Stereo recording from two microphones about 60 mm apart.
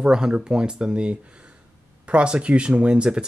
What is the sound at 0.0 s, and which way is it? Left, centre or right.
Speech, centre.